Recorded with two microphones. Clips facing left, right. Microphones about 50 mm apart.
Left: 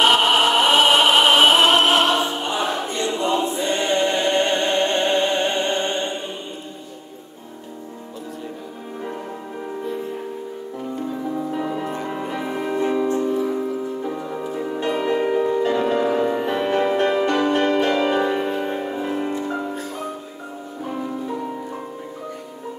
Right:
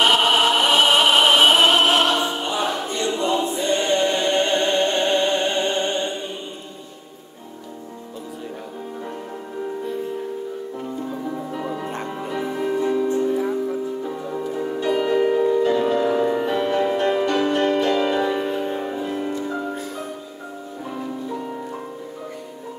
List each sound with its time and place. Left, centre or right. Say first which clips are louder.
0.0 s music: left 1 dB; centre
1.4 s opera: left 1 dB; left
2.7 s choir: even; left
4.0 s music: even; left
12.1 s music: left 1 dB; left
12.7 s music: left 1 dB; left
14.0 s music: even; centre
14.8 s music: right 2 dB; left; by 16.4 s centre
16.4 s music: even; left